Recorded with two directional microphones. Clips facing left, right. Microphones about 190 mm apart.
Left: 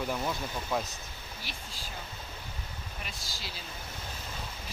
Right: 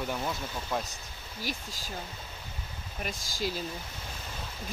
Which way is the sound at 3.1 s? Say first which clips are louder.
Right 10 dB; 45° right (ahead or behind).